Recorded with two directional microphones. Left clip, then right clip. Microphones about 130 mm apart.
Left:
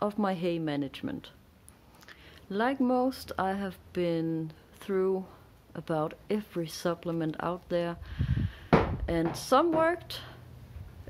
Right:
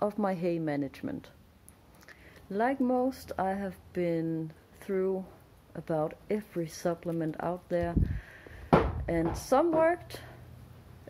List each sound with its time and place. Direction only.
0.0 s a woman's voice: 10° left (ahead or behind)